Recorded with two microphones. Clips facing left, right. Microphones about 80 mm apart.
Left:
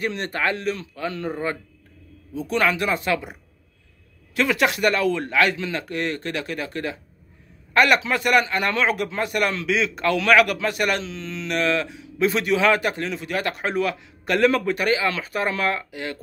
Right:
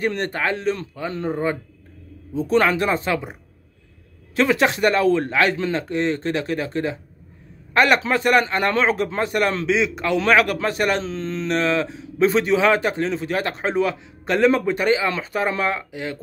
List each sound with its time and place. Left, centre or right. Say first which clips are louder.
0.0 s speech: right 4 dB; right
0.3 s speech: right 2 dB; right
2.3 s speech: right 4 dB; right
4.4 s speech: right 3 dB; right
9.8 s speech: right 1 dB; centre